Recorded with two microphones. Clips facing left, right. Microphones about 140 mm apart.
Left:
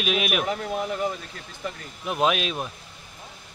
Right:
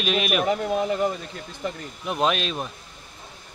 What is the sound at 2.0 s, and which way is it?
Speech, 5° left (ahead or behind).